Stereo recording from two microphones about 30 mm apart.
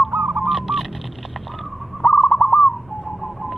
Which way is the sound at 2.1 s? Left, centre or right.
Left.